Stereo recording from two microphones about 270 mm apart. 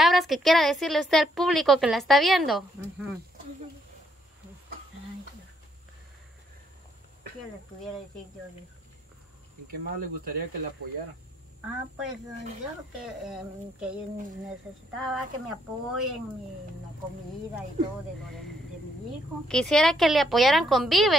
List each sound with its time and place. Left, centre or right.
0.0 s a woman's voice: centre
9.7 s speech: right
13.0 s a woman's voice: centre
15.0 s a woman's voice: centre
19.4 s a woman's voice: centre